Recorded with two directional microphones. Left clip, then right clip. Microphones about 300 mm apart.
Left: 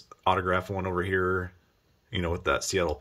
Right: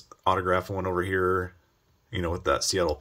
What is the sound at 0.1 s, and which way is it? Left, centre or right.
Speech, centre.